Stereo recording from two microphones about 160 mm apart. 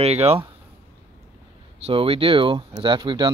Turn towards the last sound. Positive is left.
turn(degrees=-30)  # may be behind; listen again after turning